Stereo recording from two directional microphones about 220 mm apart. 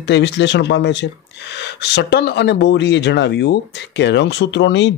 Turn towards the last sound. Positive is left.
turn(degrees=55)  # may be behind; listen again after turning